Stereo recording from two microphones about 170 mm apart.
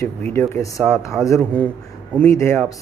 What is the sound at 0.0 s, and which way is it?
Speech, 15° left (ahead or behind).